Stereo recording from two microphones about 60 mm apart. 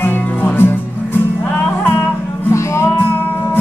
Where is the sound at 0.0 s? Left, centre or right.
Left.